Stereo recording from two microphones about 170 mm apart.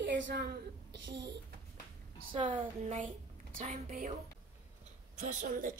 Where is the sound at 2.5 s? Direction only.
50° right (ahead or behind).